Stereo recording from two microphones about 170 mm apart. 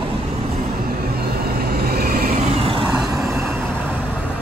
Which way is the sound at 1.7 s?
65° right (ahead or behind).